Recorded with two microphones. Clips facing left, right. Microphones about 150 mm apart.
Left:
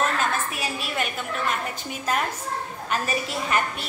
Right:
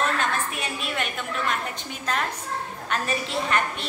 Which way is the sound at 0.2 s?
5° left (ahead or behind).